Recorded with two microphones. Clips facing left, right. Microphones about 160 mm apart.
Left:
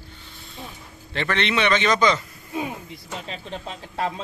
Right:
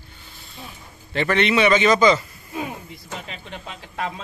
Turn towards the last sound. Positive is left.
turn(degrees=35)  # may be behind; listen again after turning